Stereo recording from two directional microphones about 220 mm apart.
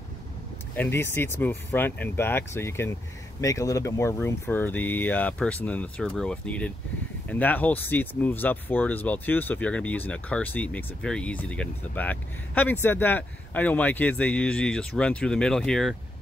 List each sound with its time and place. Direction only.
0.7 s speech: 10° left (ahead or behind)